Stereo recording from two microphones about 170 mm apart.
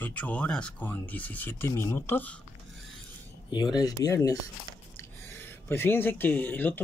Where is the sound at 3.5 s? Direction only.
25° left (ahead or behind).